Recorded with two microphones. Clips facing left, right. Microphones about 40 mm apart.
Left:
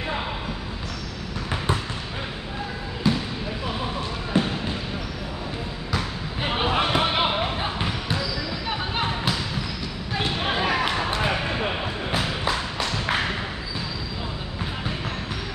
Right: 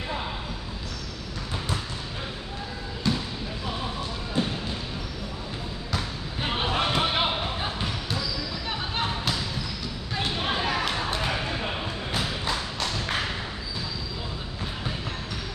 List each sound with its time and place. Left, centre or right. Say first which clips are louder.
4.3 s basketball bounce: left 4 dB; left
5.9 s basketball bounce: left 3 dB; centre
8.6 s music: left 3 dB; centre
10.1 s basketball bounce: left 3 dB; centre